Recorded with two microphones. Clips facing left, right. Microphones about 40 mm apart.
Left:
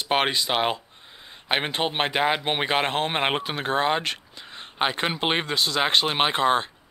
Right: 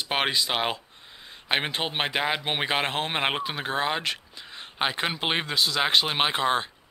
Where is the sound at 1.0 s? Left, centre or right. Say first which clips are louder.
Even; left.